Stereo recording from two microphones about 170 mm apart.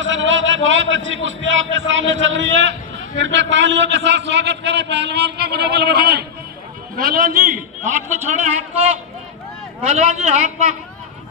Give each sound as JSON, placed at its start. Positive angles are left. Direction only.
{"t": 0.0, "sound": "a man's voice", "side_deg": -90}
{"t": 7.0, "sound": "a man's voice", "side_deg": -60}